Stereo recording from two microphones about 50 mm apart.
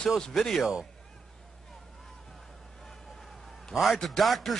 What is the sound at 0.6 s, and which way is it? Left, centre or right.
Speech, centre.